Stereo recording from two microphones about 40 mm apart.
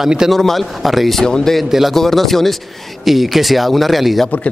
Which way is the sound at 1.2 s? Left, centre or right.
Centre.